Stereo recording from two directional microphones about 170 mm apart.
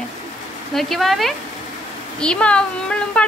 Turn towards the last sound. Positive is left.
turn(degrees=5)  # may be behind; listen again after turning